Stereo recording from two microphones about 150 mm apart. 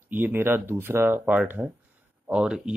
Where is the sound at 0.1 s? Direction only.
15° right (ahead or behind).